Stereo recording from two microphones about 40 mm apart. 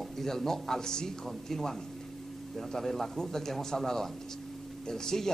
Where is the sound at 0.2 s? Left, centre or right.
Centre.